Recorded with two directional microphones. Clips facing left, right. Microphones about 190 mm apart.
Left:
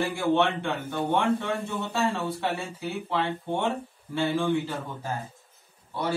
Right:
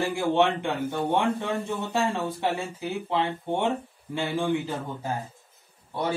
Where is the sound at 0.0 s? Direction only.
15° right (ahead or behind).